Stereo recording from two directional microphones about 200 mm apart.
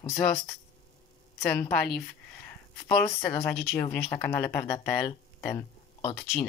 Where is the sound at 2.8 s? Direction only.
15° left (ahead or behind).